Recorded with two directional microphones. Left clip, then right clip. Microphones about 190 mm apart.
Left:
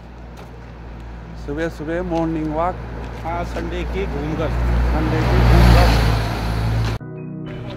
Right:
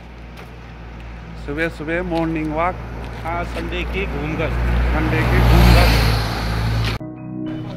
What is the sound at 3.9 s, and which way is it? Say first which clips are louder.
Speech: even; 50° right (ahead or behind).